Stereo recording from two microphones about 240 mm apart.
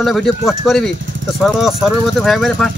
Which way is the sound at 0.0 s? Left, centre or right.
Centre.